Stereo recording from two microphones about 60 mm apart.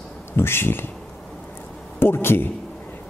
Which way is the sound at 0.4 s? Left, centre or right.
Left.